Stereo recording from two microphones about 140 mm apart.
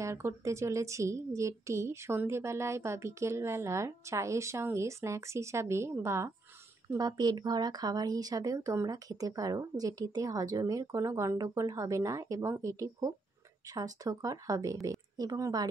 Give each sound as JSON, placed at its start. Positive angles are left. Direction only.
{"t": 0.0, "sound": "a woman's voice", "side_deg": -20}